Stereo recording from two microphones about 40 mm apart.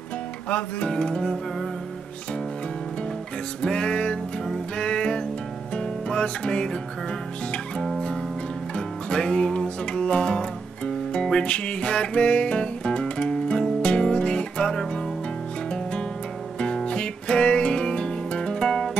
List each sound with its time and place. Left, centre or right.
0.5 s music: left
0.8 s music: centre
3.6 s music: left
8.7 s music: left
13.8 s music: left
16.5 s music: left